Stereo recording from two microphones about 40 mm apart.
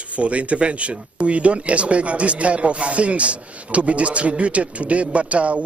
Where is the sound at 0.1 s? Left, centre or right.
Right.